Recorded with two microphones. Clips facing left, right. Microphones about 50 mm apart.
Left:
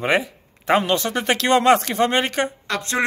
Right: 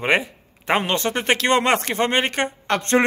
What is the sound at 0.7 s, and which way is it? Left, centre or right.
A man's voice, right.